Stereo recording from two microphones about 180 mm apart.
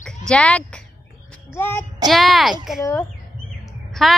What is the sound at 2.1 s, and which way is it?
Speech, centre (ahead or behind).